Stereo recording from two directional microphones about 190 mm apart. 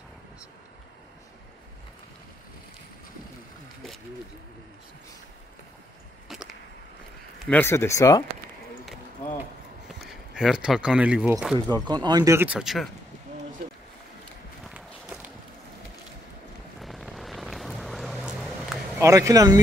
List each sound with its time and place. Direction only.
6.2 s whip: centre (ahead or behind)
7.3 s speech: 5° left (ahead or behind)
9.4 s a sound: centre (ahead or behind)
11.7 s speech: 20° right (ahead or behind); by 12.8 s centre (ahead or behind)
14.6 s a sound: 5° right (ahead or behind)
16.8 s vehicle: centre (ahead or behind)
18.9 s speech: 15° right (ahead or behind)